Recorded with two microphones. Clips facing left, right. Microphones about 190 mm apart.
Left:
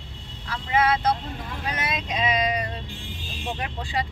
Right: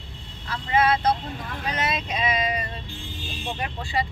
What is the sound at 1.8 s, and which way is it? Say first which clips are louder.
Vehicle: right 1 dB; 15° left (ahead or behind).